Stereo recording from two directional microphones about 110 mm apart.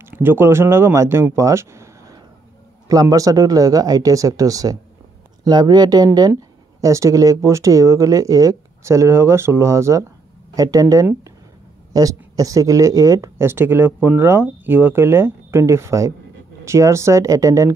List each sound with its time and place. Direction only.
0.0 s speech: 20° right (ahead or behind)